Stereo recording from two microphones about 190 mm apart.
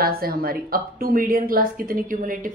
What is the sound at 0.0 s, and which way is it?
A woman's voice, 50° right (ahead or behind).